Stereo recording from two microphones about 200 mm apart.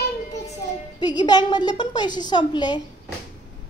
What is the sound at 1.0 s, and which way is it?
A woman's voice, 20° left (ahead or behind).